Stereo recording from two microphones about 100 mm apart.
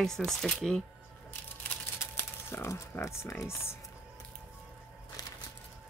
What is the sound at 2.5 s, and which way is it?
Speech, 25° left (ahead or behind).